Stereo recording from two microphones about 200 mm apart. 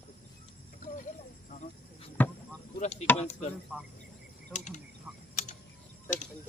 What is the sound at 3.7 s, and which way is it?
Speech, centre (ahead or behind).